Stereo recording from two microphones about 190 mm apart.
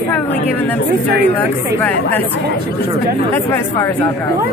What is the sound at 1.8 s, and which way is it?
Speech, 10° left (ahead or behind).